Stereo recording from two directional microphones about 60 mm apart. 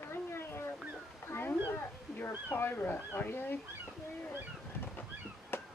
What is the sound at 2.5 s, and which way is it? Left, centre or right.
Speech, left.